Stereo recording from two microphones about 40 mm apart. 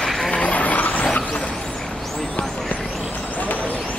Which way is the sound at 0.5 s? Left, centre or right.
Left.